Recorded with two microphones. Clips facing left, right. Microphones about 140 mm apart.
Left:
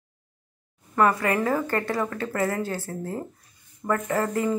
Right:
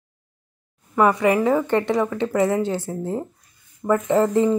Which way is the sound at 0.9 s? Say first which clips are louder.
Right 4 dB; 15° right (ahead or behind).